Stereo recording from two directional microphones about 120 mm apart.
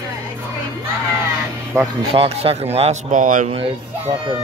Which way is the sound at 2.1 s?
55° right (ahead or behind).